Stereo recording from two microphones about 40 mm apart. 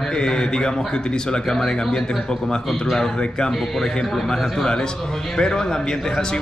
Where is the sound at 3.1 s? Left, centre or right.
Centre.